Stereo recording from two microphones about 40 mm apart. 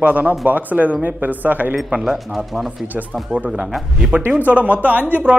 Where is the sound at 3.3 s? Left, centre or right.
Right.